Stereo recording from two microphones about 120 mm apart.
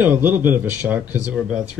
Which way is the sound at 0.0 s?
15° right (ahead or behind).